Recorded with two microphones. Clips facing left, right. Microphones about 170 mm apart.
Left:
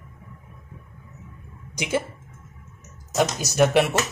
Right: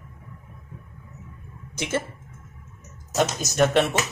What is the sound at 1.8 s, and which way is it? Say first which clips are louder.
Speech: left 2 dB; 15° left (ahead or behind).